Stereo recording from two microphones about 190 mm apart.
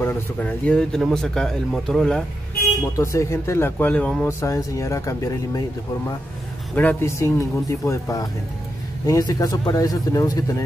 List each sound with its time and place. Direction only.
0.0 s speech: 10° left (ahead or behind)
3.0 s speech: 15° left (ahead or behind)
6.7 s speech: 10° left (ahead or behind)